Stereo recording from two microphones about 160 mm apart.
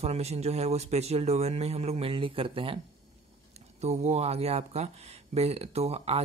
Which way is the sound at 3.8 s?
45° right (ahead or behind).